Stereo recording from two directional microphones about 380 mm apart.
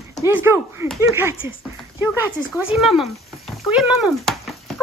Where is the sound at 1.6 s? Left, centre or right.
Centre.